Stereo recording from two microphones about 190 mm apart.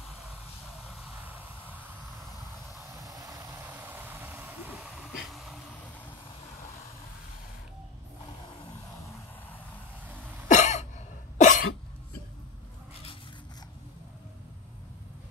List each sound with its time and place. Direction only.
3.0 s vehicle: 20° right (ahead or behind); by 5.6 s centre (ahead or behind)
10.5 s cough: 40° left (ahead or behind)